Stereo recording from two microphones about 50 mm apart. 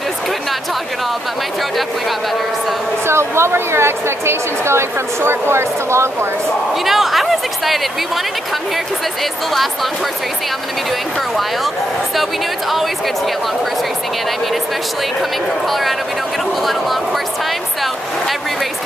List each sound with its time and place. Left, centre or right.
3.1 s a woman's voice: right
6.9 s chatter: centre
12.2 s speech: centre